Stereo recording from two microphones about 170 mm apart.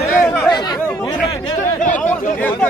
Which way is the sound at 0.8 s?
10° left (ahead or behind).